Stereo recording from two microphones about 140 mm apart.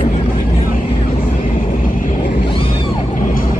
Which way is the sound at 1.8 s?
75° left (ahead or behind).